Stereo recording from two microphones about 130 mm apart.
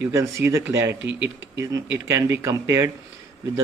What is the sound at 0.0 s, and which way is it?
Speech, 20° right (ahead or behind).